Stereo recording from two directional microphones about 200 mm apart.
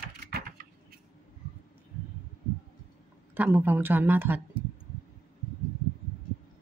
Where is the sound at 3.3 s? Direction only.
10° right (ahead or behind).